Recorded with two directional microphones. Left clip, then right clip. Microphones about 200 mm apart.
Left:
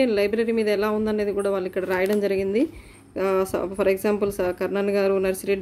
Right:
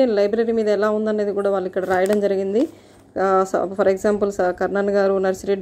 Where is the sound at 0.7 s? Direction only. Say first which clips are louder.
Right 4 dB; 5° right (ahead or behind).